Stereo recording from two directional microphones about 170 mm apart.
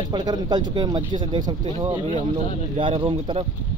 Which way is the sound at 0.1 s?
25° right (ahead or behind).